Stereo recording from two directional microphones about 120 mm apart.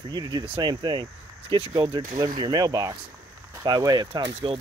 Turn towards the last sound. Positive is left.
turn(degrees=-40)  # may be behind; listen again after turning